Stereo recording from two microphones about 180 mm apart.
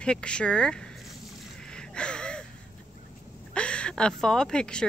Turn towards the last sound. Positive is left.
turn(degrees=5)  # may be behind; listen again after turning